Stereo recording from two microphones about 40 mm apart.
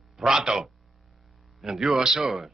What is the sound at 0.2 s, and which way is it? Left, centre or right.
A man's voice, centre.